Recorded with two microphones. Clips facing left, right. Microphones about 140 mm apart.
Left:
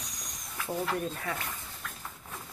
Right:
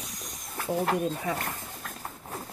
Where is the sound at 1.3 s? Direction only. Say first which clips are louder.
Right 5 dB; 45° right (ahead or behind).